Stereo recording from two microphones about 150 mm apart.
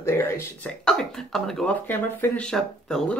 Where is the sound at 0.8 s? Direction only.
5° left (ahead or behind).